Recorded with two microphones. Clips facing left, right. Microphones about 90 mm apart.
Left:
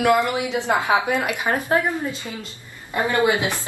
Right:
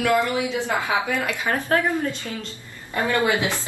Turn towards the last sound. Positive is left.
turn(degrees=20)  # may be behind; listen again after turning